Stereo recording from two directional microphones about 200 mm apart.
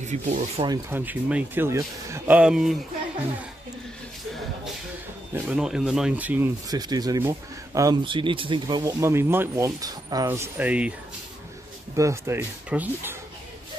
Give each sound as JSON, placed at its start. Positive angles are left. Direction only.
{"t": 0.0, "sound": "speech", "side_deg": -35}
{"t": 0.7, "sound": "speech", "side_deg": -10}
{"t": 5.3, "sound": "speech", "side_deg": -5}
{"t": 11.9, "sound": "speech", "side_deg": -15}